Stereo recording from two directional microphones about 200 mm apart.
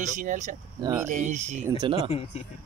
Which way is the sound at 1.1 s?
35° right (ahead or behind).